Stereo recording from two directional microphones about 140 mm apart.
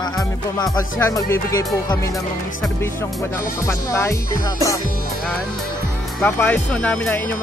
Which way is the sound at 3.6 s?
20° left (ahead or behind).